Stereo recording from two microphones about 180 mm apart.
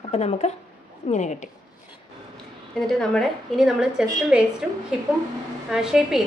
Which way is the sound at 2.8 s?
5° left (ahead or behind).